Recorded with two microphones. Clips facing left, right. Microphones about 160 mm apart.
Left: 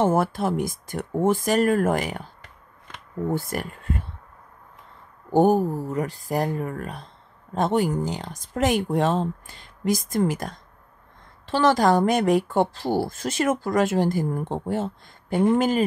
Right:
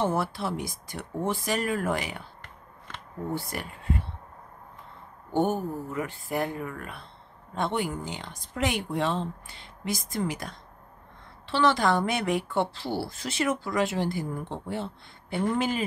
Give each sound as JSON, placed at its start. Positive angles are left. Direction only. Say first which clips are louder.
{"t": 0.0, "sound": "speech", "louder": "left 6 dB", "side_deg": 45}
{"t": 3.3, "sound": "speech", "louder": "left 6 dB", "side_deg": 45}
{"t": 5.3, "sound": "speech", "louder": "left 8 dB", "side_deg": 40}